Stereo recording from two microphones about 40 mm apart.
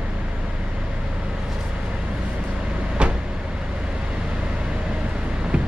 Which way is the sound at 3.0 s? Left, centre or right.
Right.